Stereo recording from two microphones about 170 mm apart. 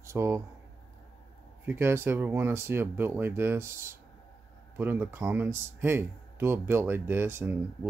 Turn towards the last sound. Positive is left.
turn(degrees=-15)  # may be behind; listen again after turning